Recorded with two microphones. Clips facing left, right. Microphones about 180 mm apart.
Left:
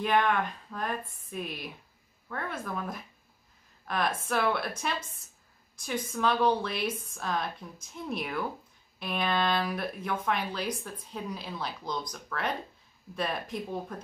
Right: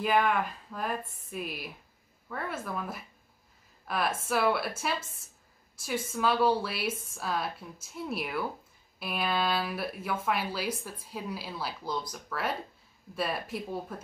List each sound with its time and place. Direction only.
0.0 s speech: 5° right (ahead or behind)